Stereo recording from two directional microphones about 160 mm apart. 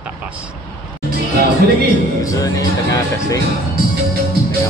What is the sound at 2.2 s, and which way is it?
Speech, 20° left (ahead or behind).